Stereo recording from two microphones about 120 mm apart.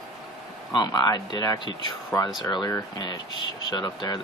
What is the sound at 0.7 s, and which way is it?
Speech, 35° left (ahead or behind).